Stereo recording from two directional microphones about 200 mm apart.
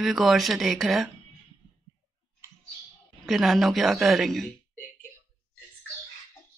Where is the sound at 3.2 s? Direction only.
Centre (ahead or behind).